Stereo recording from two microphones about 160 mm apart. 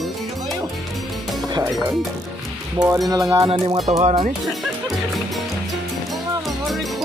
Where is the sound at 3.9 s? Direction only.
40° right (ahead or behind).